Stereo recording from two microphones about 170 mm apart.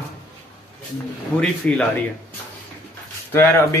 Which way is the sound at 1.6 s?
10° left (ahead or behind).